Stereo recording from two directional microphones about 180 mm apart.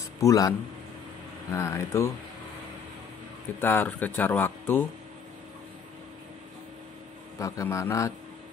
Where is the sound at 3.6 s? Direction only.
10° left (ahead or behind).